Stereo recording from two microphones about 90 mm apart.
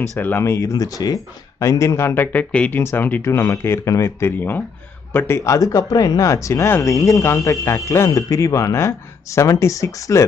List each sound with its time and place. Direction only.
0.2 s speech: 25° left (ahead or behind)